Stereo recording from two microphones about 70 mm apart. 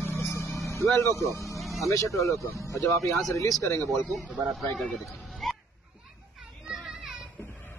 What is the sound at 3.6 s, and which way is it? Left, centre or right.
Speech, left.